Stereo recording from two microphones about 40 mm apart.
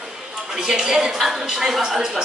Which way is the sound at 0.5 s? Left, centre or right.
Centre.